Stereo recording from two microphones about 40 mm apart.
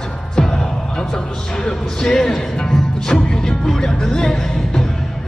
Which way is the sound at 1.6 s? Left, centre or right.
Centre.